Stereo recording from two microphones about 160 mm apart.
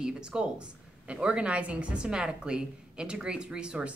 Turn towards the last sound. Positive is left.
turn(degrees=-5)  # may be behind; listen again after turning